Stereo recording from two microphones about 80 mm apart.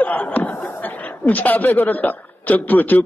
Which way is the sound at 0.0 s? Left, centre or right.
Centre.